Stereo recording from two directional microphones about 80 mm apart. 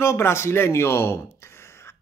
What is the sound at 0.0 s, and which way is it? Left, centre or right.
Speech, left.